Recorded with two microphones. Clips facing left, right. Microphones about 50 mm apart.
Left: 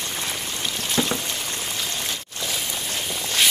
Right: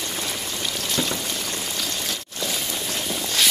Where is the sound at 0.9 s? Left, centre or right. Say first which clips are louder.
Left 3 dB; left.